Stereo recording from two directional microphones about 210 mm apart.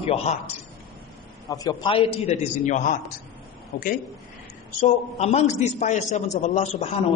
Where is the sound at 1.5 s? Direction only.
20° left (ahead or behind); by 3.9 s 45° left (ahead or behind).